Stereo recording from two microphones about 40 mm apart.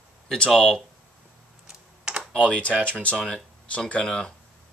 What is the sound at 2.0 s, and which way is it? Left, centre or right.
Computer keyboard, right.